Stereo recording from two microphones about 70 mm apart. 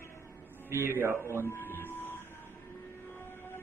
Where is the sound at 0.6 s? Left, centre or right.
Right.